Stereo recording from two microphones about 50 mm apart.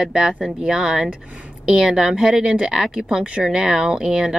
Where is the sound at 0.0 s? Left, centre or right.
Centre.